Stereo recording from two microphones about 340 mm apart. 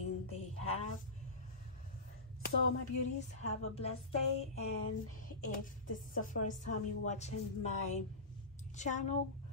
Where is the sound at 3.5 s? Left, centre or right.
Centre.